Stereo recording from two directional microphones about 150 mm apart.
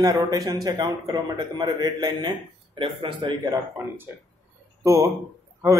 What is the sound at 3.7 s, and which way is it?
A man's voice, 15° right (ahead or behind).